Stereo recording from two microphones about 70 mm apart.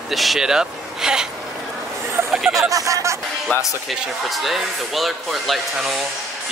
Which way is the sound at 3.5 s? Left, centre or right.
Centre.